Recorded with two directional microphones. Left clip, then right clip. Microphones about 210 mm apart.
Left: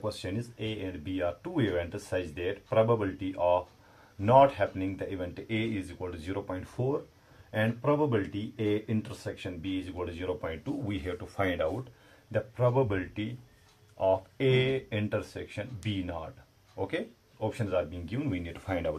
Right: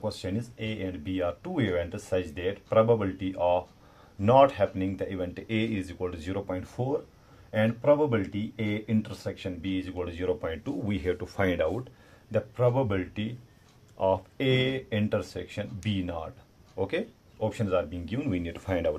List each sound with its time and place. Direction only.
0.0 s speech: 45° right (ahead or behind)